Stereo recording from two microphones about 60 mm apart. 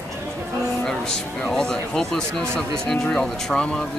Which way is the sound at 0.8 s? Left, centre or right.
Centre.